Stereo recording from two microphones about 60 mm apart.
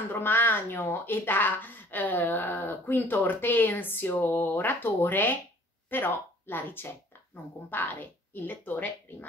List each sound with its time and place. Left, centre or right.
0.1 s speech: left